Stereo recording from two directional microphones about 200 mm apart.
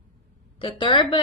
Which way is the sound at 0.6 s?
25° left (ahead or behind).